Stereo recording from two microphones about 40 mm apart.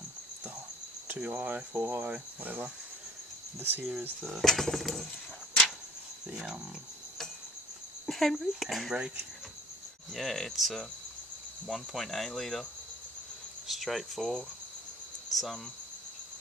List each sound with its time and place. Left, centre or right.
1.1 s speech: right
4.4 s cricket: centre
8.1 s cricket: centre
10.1 s cricket: centre
13.7 s cricket: centre
15.3 s speech: centre